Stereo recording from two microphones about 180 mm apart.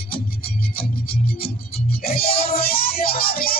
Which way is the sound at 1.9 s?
55° left (ahead or behind).